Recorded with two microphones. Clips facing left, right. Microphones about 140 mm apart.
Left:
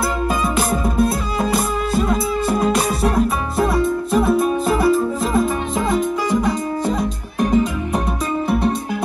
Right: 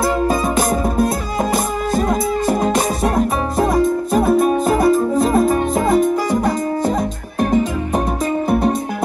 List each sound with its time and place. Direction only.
0.6 s music: 40° right (ahead or behind)